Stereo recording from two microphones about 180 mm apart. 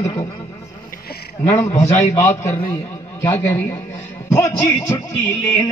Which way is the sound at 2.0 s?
15° left (ahead or behind).